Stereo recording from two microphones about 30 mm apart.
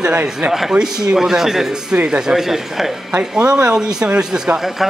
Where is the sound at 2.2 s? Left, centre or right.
Centre.